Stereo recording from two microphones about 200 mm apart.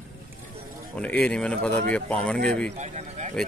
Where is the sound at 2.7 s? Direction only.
35° right (ahead or behind).